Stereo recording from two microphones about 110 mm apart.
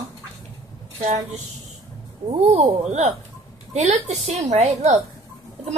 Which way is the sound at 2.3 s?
70° right (ahead or behind).